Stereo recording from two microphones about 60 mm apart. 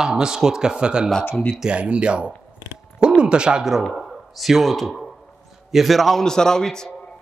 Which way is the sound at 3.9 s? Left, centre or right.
Centre.